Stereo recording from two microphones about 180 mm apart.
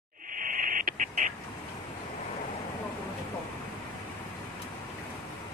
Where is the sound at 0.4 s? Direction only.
50° right (ahead or behind).